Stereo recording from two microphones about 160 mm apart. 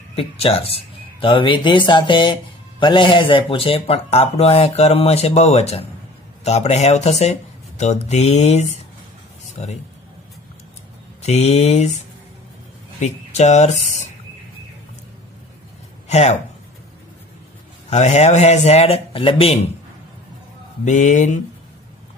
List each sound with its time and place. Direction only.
0.1 s speech: 35° left (ahead or behind)
11.2 s speech: 40° left (ahead or behind)
13.0 s speech: 45° left (ahead or behind)
16.1 s speech: 40° left (ahead or behind)
17.8 s speech: 45° left (ahead or behind)
20.8 s speech: 50° left (ahead or behind)